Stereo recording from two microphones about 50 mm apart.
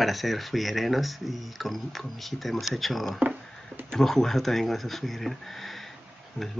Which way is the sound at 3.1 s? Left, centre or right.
Right.